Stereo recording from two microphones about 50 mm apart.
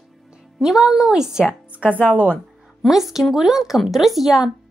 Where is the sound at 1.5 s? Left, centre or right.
Right.